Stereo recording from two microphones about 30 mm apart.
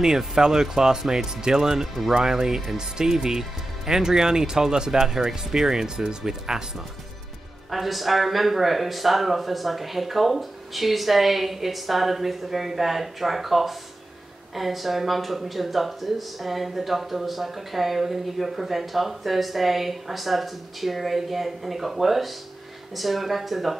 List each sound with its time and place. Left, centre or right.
0.0 s speech: centre
7.7 s speech: centre